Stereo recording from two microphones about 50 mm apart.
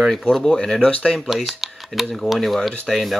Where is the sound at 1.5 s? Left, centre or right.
Centre.